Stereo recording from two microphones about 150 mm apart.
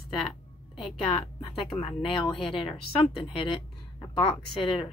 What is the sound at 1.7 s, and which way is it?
Speech, 35° left (ahead or behind).